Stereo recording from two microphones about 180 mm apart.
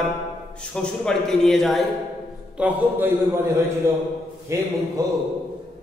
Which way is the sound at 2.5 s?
10° right (ahead or behind).